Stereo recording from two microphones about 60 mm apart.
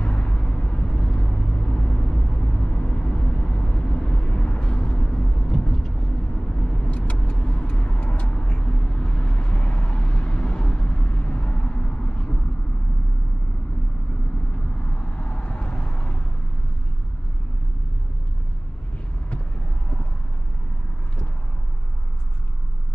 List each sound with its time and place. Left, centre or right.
0.0 s vehicle: left
14.8 s vehicle: left